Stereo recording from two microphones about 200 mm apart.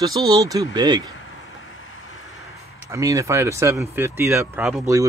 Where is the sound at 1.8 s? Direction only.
85° left.